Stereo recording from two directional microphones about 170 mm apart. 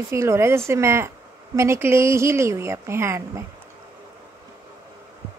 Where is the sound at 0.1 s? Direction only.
15° right (ahead or behind).